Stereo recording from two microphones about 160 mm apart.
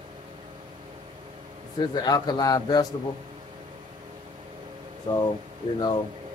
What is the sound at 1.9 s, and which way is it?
Speech, 25° left (ahead or behind).